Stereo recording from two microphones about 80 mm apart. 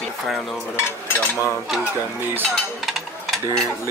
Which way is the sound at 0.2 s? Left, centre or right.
Centre.